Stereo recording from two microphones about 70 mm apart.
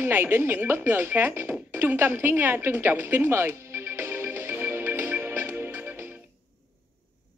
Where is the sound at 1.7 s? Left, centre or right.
Right.